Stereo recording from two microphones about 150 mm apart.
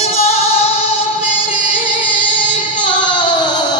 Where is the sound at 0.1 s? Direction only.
45° left (ahead or behind).